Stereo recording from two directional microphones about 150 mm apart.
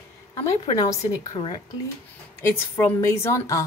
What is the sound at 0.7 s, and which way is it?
Speech, 25° left (ahead or behind).